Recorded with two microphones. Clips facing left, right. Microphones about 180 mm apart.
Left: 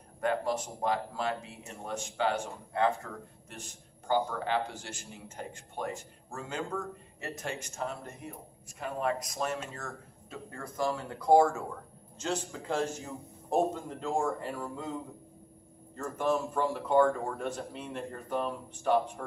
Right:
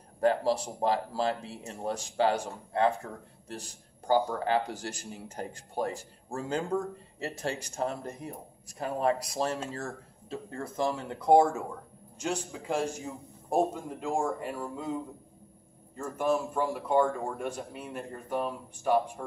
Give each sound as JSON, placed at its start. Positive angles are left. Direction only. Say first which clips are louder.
{"t": 0.2, "sound": "speech", "louder": "right 4 dB", "side_deg": -30}
{"t": 16.0, "sound": "speech", "louder": "right 1 dB", "side_deg": -10}